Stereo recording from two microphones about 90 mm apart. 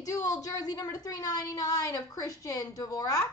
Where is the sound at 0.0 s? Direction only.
40° left (ahead or behind).